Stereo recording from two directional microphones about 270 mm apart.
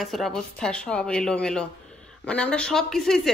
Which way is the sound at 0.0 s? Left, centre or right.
Centre.